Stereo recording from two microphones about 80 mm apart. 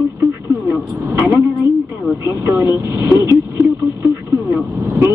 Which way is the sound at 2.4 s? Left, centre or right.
Right.